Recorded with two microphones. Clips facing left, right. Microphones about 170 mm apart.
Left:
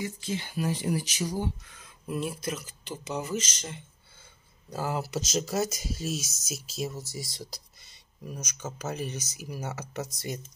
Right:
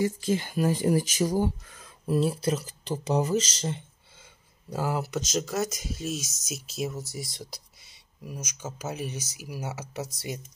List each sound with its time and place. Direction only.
0.0 s speech: 45° right (ahead or behind)
4.6 s speech: 10° right (ahead or behind)
5.1 s speech: 5° left (ahead or behind)
8.3 s speech: 5° right (ahead or behind)